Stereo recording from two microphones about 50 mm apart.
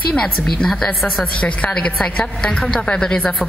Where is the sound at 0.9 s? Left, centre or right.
Centre.